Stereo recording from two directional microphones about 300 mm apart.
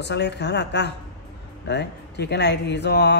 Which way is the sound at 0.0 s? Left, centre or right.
Left.